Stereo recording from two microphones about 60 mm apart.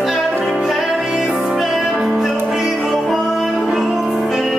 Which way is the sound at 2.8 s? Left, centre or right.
Centre.